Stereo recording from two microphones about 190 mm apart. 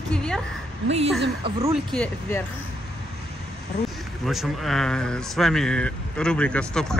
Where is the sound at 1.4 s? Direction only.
30° right (ahead or behind).